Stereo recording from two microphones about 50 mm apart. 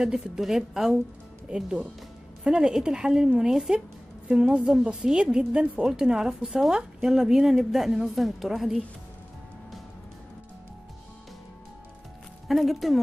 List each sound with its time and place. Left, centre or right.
0.0 s a woman's voice: centre
12.4 s speech: centre